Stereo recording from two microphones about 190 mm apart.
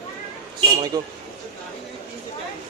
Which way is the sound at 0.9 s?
20° right (ahead or behind).